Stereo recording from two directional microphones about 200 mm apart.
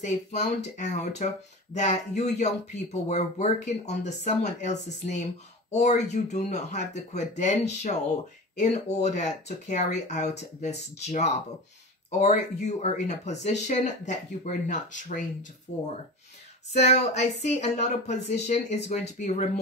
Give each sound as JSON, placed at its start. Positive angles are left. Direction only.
{"t": 0.1, "sound": "speech", "side_deg": 35}
{"t": 16.7, "sound": "speech", "side_deg": 35}